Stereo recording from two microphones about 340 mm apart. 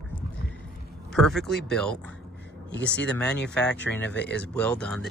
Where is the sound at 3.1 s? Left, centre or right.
Centre.